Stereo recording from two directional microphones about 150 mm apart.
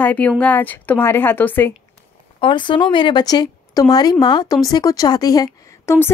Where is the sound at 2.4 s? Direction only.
30° left (ahead or behind).